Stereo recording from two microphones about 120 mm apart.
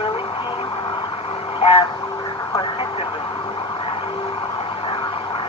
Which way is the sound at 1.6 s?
50° left (ahead or behind).